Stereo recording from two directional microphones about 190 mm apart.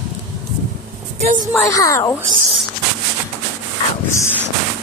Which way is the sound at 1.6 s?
15° left (ahead or behind).